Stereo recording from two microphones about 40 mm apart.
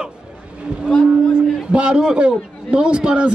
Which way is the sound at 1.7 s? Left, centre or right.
Right.